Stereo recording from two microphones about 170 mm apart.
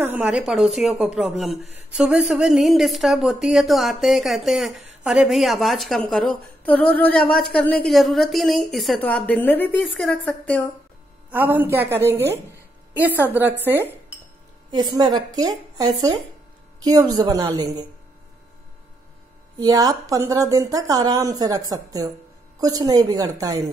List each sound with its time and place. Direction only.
0.0 s a woman's voice: 10° right (ahead or behind); by 10.7 s 10° left (ahead or behind)
11.2 s a woman's voice: 10° right (ahead or behind)
14.7 s a woman's voice: 25° right (ahead or behind)
19.6 s a woman's voice: 20° right (ahead or behind)